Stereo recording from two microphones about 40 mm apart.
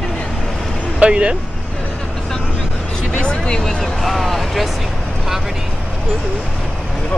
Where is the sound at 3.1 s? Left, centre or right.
Left.